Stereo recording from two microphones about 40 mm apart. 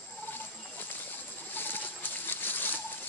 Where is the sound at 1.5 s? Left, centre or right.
Left.